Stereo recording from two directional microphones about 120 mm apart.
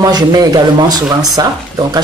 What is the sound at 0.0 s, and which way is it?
Speech, 35° right (ahead or behind).